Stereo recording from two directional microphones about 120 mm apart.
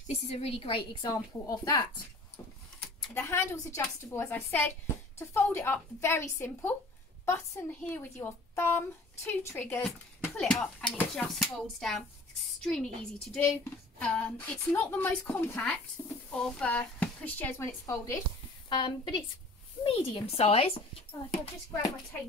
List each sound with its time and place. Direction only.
0.1 s a woman's voice: 60° left (ahead or behind)
1.0 s a woman's voice: 30° left (ahead or behind)
3.2 s a woman's voice: 25° left (ahead or behind)
10.3 s a woman's voice: 5° left (ahead or behind); by 18.2 s 25° left (ahead or behind)
18.7 s a woman's voice: 45° left (ahead or behind)
20.3 s speech: 60° left (ahead or behind)